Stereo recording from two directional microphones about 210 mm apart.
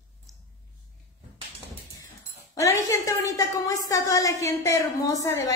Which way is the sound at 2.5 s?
15° left (ahead or behind).